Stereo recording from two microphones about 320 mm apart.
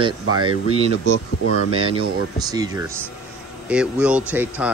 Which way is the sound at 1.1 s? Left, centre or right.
Right.